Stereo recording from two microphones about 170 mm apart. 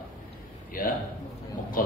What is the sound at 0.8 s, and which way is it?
A man's voice, 55° left (ahead or behind).